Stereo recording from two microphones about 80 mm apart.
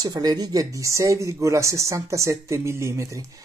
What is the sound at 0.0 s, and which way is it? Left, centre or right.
Speech, right.